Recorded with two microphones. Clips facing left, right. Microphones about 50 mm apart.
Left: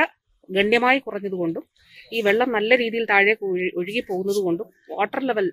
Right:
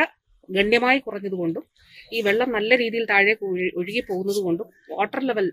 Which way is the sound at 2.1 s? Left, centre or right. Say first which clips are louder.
Left 2 dB; left.